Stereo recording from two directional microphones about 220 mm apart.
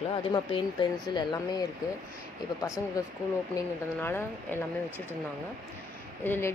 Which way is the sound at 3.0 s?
15° left (ahead or behind).